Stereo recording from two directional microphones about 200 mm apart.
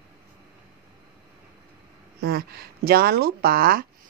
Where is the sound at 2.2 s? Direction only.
50° right (ahead or behind).